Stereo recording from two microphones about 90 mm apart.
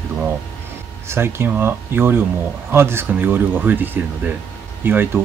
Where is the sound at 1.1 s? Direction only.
25° right (ahead or behind).